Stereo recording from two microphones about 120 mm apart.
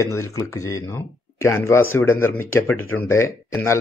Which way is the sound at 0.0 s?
25° left (ahead or behind).